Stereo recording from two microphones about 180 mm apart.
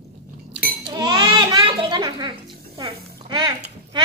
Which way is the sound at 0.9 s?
25° right (ahead or behind).